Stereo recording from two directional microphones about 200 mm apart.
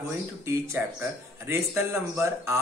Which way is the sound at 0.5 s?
10° right (ahead or behind).